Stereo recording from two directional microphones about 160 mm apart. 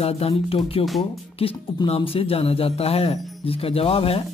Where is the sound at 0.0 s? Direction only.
35° left (ahead or behind).